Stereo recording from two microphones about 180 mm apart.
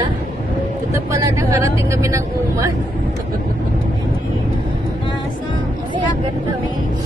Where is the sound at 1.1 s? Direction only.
15° right (ahead or behind).